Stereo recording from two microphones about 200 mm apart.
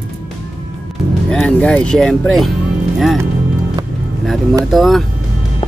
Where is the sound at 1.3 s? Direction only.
5° left (ahead or behind).